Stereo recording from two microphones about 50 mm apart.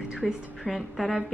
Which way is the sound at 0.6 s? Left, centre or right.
Centre.